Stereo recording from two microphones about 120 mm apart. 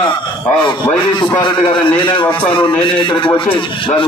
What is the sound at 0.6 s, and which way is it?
A man's voice, 40° left (ahead or behind).